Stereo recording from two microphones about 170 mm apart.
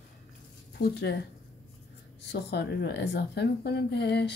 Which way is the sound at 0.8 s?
75° left (ahead or behind).